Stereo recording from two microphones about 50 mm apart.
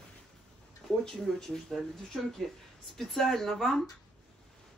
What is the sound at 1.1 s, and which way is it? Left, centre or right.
Speech, centre.